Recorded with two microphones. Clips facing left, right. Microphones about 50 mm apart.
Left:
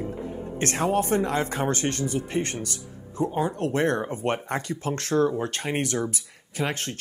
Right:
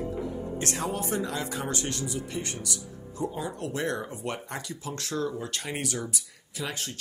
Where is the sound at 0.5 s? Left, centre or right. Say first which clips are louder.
Left 9 dB; left.